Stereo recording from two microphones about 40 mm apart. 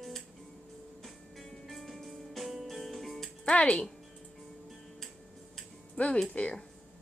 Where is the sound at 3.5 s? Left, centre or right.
Left.